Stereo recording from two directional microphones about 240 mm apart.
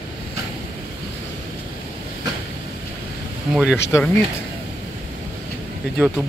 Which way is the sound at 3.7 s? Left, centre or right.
Centre.